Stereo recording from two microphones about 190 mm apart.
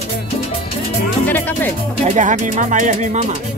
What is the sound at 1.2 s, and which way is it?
Speech, 10° left (ahead or behind).